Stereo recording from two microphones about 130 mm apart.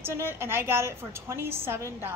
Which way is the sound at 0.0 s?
20° right (ahead or behind).